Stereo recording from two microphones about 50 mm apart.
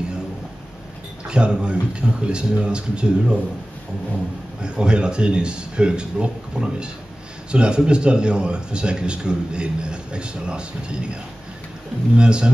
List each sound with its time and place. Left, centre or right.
1.3 s a man's voice: centre
4.6 s a man's voice: centre
12.2 s a man's voice: centre